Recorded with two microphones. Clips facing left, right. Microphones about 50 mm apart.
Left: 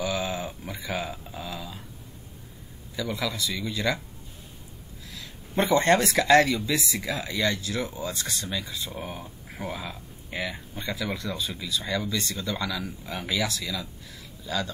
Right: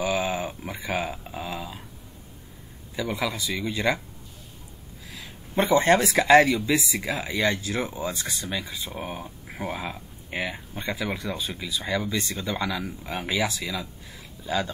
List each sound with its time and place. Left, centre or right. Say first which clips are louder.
0.0 s a sound: right 3 dB; right
3.0 s speech: right 2 dB; right
5.5 s speech: right 1 dB; centre; by 14.7 s right